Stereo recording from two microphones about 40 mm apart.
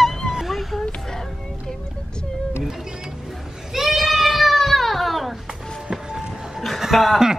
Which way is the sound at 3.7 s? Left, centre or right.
Centre.